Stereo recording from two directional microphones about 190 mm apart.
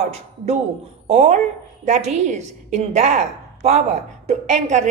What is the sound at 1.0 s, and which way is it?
A woman's voice, 40° right (ahead or behind).